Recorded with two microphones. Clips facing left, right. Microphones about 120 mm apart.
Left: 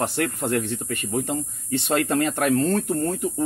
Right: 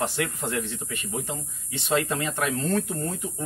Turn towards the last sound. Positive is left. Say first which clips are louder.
# left 4 dB
turn(degrees=50)  # may be behind; listen again after turning